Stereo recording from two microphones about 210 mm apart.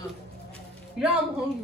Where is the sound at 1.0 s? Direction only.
Centre (ahead or behind).